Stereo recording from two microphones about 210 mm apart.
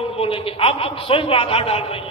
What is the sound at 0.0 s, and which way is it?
A man's voice, 25° left (ahead or behind).